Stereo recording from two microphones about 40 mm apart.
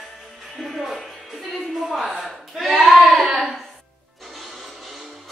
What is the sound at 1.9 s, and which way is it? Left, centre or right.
Speech, centre.